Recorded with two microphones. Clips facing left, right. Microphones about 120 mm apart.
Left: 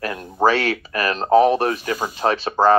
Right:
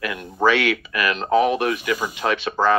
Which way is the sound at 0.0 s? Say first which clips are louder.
Left 2 dB; 35° left (ahead or behind).